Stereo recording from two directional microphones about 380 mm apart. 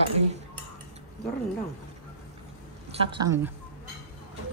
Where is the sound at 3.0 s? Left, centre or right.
Centre.